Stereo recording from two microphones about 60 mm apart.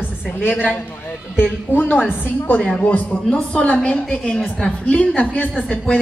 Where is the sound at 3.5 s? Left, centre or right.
Centre.